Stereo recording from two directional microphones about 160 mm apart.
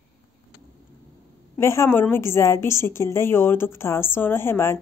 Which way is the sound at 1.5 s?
15° left (ahead or behind).